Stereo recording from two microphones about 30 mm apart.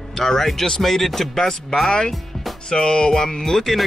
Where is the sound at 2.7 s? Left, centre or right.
Left.